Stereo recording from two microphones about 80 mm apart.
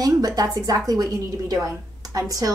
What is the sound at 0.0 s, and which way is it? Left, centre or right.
A woman's voice, right.